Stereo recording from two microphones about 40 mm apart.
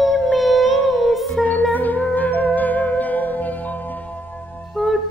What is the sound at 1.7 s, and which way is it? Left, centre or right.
Music, left.